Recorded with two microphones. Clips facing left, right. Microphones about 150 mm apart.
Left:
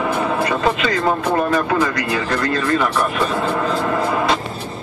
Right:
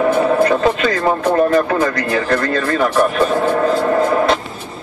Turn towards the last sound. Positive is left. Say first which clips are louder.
# right 5 dB
turn(degrees=-50)  # may be behind; listen again after turning